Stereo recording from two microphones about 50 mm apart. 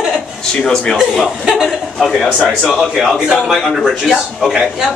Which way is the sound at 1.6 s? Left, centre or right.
Centre.